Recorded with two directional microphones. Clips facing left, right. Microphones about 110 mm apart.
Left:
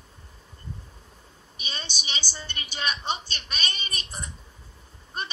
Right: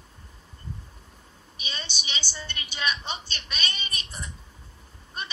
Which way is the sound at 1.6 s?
40° left (ahead or behind).